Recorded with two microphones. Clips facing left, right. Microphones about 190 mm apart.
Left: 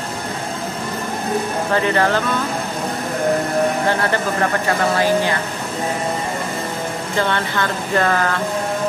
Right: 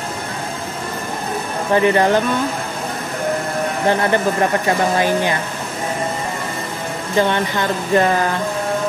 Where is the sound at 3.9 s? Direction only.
20° right (ahead or behind).